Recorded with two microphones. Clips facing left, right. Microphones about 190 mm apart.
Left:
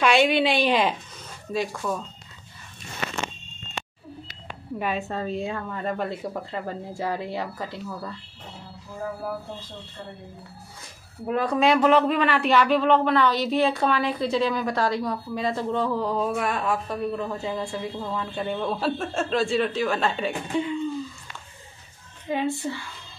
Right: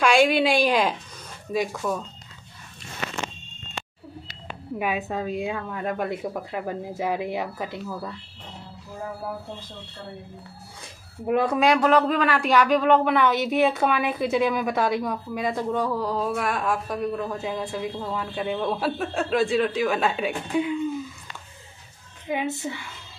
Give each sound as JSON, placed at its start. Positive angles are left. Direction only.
{"t": 0.0, "sound": "a woman's voice", "side_deg": 0}
{"t": 4.7, "sound": "a woman's voice", "side_deg": -5}
{"t": 11.2, "sound": "a woman's voice", "side_deg": -10}
{"t": 11.7, "sound": "a woman's voice", "side_deg": 5}
{"t": 12.2, "sound": "a woman's voice", "side_deg": -10}
{"t": 22.3, "sound": "a woman's voice", "side_deg": -15}